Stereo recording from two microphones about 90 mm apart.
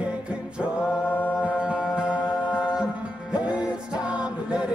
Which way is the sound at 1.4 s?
15° right (ahead or behind).